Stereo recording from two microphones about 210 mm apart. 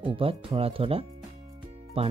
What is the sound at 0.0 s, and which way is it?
Speech, 25° right (ahead or behind).